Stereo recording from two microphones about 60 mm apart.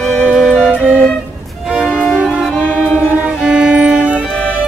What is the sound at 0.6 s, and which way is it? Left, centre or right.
Music, right.